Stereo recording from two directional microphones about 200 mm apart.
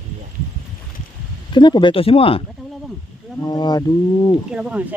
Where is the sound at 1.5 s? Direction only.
20° left (ahead or behind).